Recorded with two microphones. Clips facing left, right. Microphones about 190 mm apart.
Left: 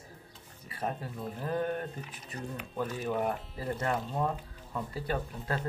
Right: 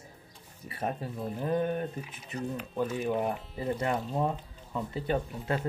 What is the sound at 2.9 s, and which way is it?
Speech, 10° right (ahead or behind).